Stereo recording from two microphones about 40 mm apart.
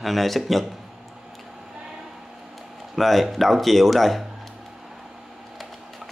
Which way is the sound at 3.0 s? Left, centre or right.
Centre.